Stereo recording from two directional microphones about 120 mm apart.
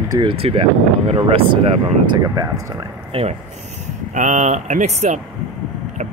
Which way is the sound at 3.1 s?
55° right (ahead or behind).